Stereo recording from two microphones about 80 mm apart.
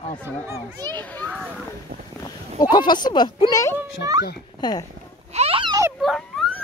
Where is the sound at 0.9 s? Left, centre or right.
Left.